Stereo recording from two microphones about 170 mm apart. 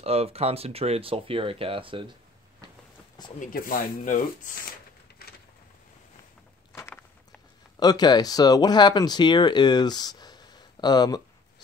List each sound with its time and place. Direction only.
0.0 s speech: 35° right (ahead or behind)
3.3 s speech: 55° left (ahead or behind)
6.7 s walk: 15° left (ahead or behind)
7.8 s speech: 25° left (ahead or behind)